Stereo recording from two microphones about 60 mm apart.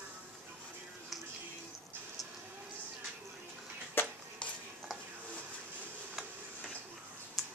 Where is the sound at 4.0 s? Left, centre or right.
Left.